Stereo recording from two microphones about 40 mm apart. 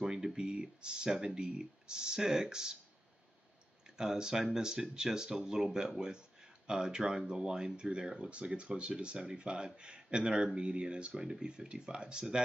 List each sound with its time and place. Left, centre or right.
0.0 s speech: centre
4.0 s speech: centre